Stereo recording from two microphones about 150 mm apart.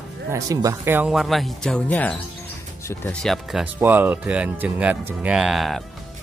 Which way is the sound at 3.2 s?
Centre (ahead or behind).